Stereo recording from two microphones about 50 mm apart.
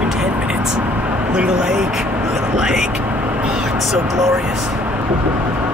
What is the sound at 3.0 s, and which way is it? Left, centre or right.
Vehicle, right.